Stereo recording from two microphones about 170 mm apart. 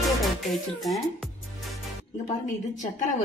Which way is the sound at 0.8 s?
Centre (ahead or behind).